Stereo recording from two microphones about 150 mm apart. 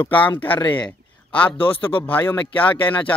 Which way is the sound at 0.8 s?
10° left (ahead or behind).